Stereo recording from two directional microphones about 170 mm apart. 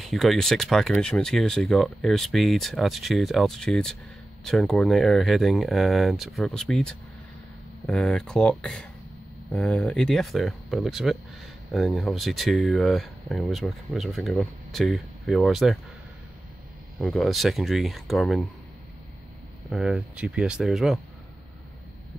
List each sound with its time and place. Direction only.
0.0 s speech: centre (ahead or behind)
17.0 s speech: centre (ahead or behind)
19.7 s speech: 5° right (ahead or behind)